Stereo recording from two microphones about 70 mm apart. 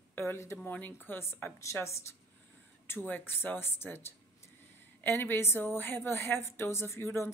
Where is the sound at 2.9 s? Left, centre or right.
Left.